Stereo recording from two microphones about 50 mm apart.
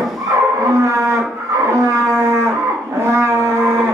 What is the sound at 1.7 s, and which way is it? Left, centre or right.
Dog, right.